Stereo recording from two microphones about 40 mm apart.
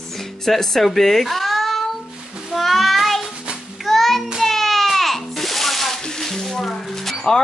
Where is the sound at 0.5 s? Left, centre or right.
Centre.